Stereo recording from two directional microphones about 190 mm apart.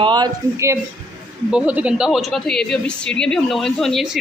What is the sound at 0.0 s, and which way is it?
Speech, 20° right (ahead or behind).